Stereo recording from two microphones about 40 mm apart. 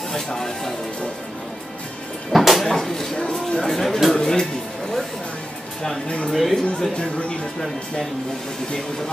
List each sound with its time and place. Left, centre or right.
0.1 s speech: centre
2.3 s speech: centre
2.6 s speech: centre
5.8 s speech: centre
6.3 s speech: centre